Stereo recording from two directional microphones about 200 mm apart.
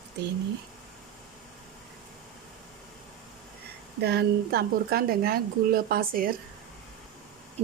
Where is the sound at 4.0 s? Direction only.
55° right (ahead or behind).